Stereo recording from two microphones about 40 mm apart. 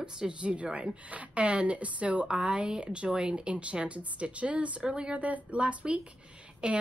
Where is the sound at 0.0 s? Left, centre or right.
Right.